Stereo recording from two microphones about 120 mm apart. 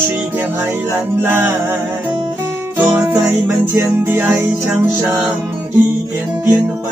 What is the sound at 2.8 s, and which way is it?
Music, 20° right (ahead or behind).